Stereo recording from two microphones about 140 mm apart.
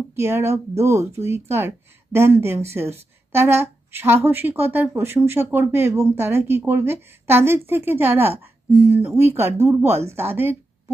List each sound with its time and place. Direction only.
0.1 s a woman's voice: 15° right (ahead or behind)